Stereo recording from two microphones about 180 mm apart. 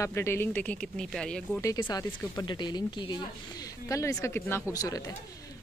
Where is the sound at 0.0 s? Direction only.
15° left (ahead or behind).